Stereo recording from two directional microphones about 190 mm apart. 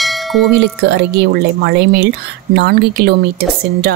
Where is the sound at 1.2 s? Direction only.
60° right (ahead or behind).